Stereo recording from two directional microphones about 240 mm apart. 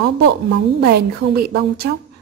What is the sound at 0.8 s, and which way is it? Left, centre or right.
A woman's voice, right.